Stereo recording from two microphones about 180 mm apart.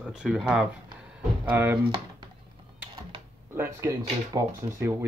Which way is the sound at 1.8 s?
30° right (ahead or behind).